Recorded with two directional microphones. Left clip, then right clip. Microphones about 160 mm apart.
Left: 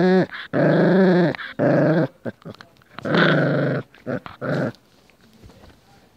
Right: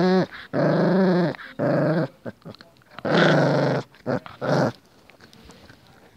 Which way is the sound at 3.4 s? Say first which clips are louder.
Right 1 dB; centre (ahead or behind).